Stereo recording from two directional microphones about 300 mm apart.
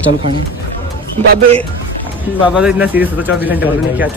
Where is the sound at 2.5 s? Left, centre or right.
Centre.